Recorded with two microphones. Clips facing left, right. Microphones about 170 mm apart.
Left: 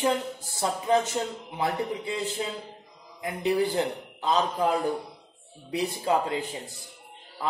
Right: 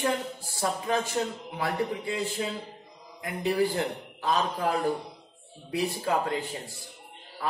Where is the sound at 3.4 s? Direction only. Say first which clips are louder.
Left 1 dB; 20° left (ahead or behind).